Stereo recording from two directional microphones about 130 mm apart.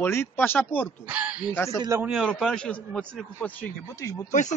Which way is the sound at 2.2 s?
5° left (ahead or behind).